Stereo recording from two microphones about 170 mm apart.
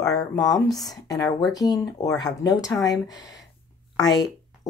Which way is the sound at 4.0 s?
25° left (ahead or behind).